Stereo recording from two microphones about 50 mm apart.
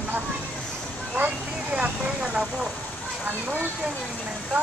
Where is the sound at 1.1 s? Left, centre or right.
Right.